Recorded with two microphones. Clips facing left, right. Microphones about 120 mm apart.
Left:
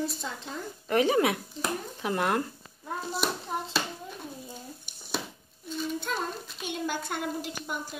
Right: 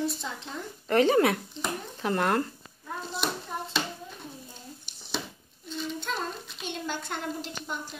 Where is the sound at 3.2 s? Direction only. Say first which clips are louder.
Even; 5° left (ahead or behind).